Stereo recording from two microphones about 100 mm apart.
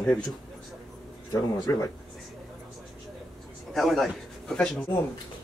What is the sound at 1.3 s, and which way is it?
Speech, 35° left (ahead or behind).